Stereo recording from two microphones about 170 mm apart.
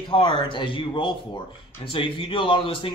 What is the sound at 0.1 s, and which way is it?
Speech, 30° left (ahead or behind).